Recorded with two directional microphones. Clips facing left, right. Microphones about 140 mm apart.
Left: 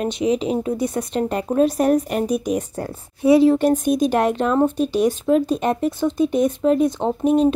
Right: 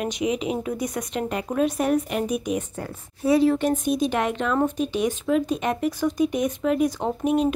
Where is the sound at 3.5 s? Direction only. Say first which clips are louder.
Left 5 dB; 45° left (ahead or behind).